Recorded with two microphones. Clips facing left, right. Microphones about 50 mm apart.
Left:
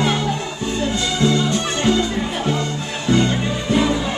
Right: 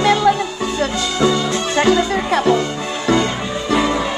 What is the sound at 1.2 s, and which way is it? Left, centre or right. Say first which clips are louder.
Music: right 2 dB; right.